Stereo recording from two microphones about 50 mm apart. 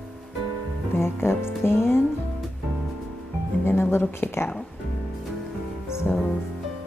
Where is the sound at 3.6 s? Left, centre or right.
Left.